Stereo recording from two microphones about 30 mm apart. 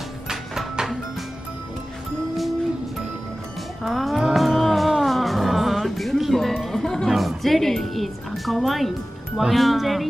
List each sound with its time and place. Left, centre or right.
3.8 s music: centre
6.8 s music: centre
7.1 s music: centre
7.9 s speech: centre